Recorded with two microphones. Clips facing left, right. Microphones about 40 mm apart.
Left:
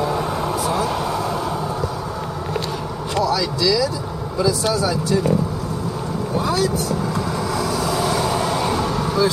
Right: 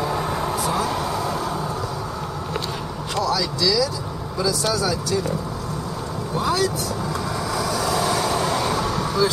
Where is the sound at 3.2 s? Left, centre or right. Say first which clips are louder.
Left 2 dB; centre.